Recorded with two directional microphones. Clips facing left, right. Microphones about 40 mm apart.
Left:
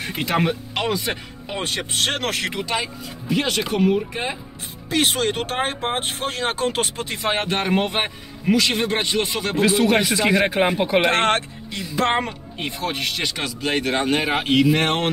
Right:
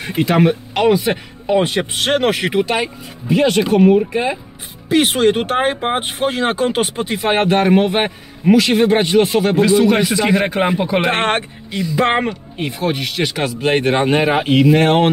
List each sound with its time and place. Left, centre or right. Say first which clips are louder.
0.0 s speech: right 7 dB; centre
0.5 s speech: right 9 dB; centre
3.4 s speech: right 9 dB; centre
4.1 s speech: right 8 dB; right
7.7 s speech: right 7 dB; centre
8.7 s speech: right 9 dB; centre
11.0 s speech: even; right
12.5 s speech: right 5 dB; centre
13.4 s speech: right 9 dB; right
14.4 s speech: right 5 dB; centre